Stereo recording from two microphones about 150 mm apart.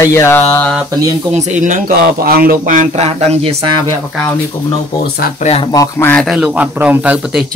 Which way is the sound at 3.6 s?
30° right (ahead or behind).